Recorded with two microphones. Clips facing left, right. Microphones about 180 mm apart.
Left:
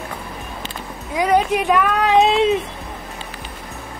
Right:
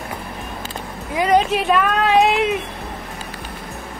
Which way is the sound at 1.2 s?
15° left (ahead or behind).